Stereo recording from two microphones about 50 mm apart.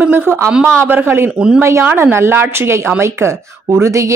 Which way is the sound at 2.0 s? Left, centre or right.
Right.